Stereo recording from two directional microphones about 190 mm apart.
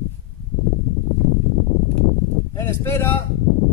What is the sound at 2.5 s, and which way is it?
Speech, 15° left (ahead or behind).